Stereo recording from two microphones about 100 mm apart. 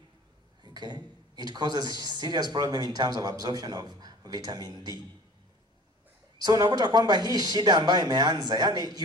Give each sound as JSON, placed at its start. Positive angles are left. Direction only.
{"t": 0.7, "sound": "speech", "side_deg": -45}
{"t": 6.4, "sound": "speech", "side_deg": -40}